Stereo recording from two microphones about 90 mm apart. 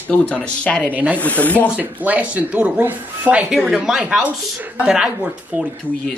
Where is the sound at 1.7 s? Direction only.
15° right (ahead or behind).